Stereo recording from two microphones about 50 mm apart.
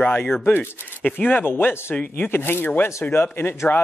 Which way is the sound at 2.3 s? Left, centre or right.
Left.